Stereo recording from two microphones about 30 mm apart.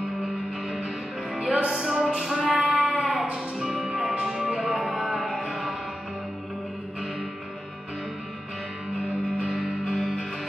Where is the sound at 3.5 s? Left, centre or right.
Centre.